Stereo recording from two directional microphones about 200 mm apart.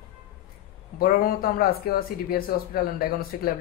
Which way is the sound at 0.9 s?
50° left (ahead or behind).